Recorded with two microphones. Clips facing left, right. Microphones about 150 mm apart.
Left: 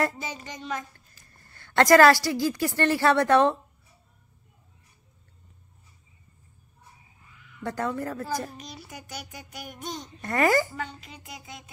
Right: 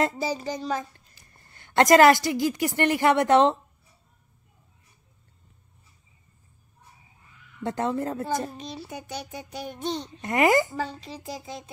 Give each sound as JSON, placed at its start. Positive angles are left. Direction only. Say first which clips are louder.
{"t": 0.2, "sound": "speech", "louder": "right 8 dB", "side_deg": -35}
{"t": 0.9, "sound": "a woman's voice", "louder": "even", "side_deg": -20}
{"t": 7.6, "sound": "a child's voice", "louder": "right 3 dB", "side_deg": -25}
{"t": 10.2, "sound": "a child's voice", "louder": "right 2 dB", "side_deg": -20}
{"t": 10.8, "sound": "speech", "louder": "right 5 dB", "side_deg": -30}